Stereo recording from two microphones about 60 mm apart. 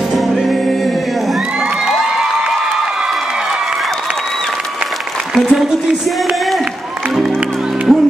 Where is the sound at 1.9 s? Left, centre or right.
Centre.